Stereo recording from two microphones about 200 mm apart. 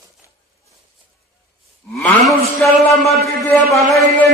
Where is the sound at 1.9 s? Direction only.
Centre (ahead or behind).